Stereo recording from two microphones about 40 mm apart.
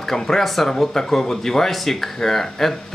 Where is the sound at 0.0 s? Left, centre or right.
Centre.